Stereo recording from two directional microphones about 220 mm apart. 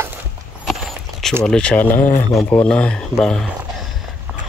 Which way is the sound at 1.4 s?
5° left (ahead or behind).